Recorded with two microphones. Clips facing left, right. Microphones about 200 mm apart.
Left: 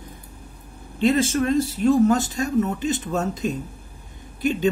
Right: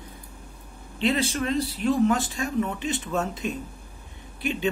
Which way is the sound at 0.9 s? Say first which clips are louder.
Left 5 dB; 45° left (ahead or behind).